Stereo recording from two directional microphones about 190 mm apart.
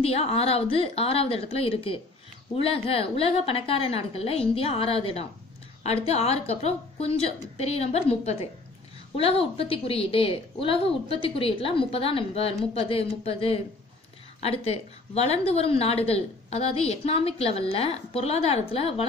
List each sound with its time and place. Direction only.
0.0 s a woman's voice: 30° left (ahead or behind)